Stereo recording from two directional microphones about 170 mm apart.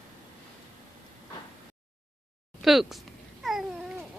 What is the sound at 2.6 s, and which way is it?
Speech, centre (ahead or behind).